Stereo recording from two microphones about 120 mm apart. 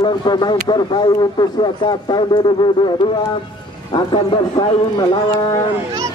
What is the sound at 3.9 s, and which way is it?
A man's voice, 40° left (ahead or behind).